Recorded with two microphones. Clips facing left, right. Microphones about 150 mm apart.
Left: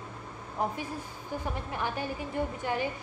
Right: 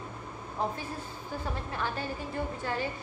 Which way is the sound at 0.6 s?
15° left (ahead or behind).